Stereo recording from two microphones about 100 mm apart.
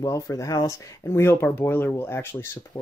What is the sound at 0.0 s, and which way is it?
Speech, 35° left (ahead or behind).